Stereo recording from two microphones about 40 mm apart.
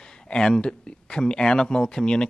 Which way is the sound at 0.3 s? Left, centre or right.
Left.